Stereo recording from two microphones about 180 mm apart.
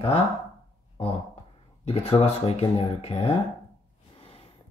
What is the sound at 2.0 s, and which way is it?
Speech, 35° left (ahead or behind).